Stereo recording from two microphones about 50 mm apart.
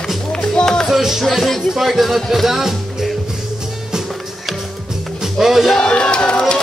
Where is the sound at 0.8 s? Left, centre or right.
Centre.